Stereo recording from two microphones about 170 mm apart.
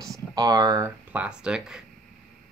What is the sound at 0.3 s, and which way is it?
Speech, 25° right (ahead or behind).